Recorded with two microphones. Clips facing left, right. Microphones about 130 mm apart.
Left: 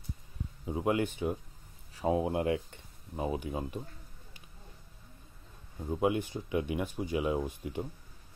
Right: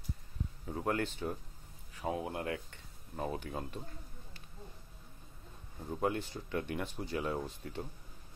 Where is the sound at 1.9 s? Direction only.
25° left (ahead or behind).